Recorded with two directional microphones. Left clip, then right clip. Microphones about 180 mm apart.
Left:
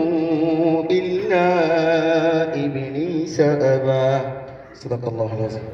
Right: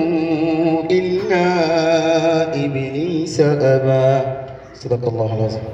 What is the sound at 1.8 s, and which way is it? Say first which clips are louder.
Mantra: right 2 dB; 55° right (ahead or behind).